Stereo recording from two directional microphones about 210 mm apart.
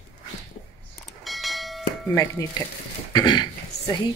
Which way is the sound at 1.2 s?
Centre (ahead or behind).